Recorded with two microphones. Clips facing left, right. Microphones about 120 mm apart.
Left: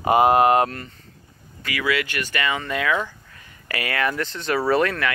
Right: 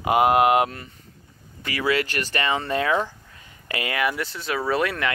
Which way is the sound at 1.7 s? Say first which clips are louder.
Right 1 dB; 35° right (ahead or behind).